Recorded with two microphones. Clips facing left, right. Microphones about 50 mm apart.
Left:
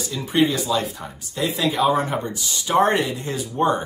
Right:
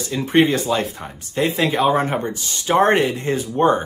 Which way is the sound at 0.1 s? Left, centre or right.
Right.